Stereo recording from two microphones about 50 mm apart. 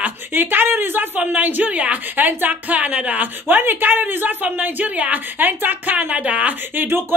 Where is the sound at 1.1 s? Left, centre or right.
Right.